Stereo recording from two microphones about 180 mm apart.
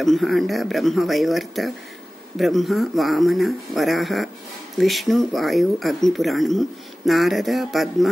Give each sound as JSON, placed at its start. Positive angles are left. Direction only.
{"t": 0.0, "sound": "speech", "side_deg": 0}